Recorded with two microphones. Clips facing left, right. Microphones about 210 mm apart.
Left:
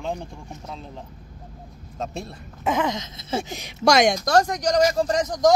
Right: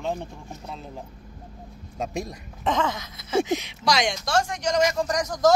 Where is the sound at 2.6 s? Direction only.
10° left (ahead or behind).